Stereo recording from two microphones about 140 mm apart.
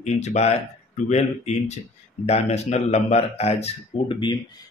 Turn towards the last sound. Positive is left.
turn(degrees=35)  # may be behind; listen again after turning